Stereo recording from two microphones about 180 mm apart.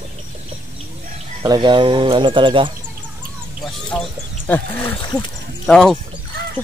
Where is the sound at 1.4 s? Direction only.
20° right (ahead or behind).